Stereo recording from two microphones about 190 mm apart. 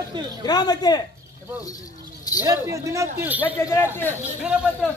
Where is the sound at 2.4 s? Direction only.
15° right (ahead or behind).